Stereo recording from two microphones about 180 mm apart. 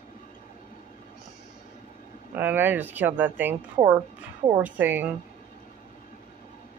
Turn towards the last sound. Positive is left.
turn(degrees=-10)  # may be behind; listen again after turning